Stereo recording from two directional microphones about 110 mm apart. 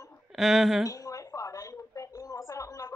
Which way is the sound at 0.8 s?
30° left (ahead or behind).